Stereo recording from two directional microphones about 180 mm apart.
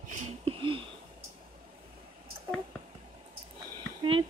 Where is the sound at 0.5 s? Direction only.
30° right (ahead or behind).